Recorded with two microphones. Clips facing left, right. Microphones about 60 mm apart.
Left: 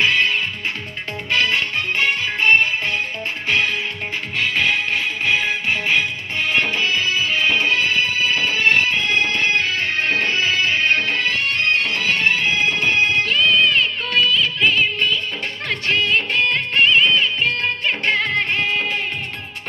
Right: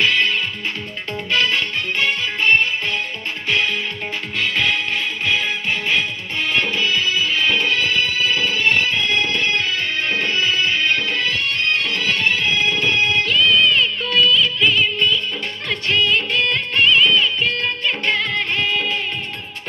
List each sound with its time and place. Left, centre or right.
0.0 s music: left